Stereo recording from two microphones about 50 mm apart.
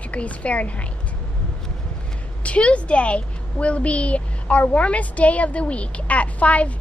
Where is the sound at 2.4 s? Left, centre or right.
Left.